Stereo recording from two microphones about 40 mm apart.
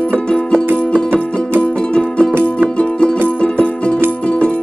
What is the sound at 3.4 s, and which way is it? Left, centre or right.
Music, left.